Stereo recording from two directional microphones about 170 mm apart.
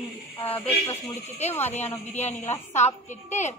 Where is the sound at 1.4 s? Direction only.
40° left (ahead or behind).